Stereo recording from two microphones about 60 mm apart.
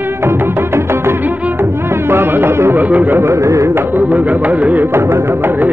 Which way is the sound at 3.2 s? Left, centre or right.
Right.